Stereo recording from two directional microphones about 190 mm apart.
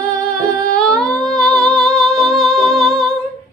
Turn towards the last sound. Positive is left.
turn(degrees=0)  # may be behind; listen again after turning